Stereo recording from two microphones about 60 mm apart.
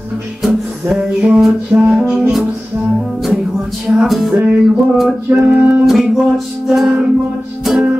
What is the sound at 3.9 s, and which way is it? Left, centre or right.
Music, centre.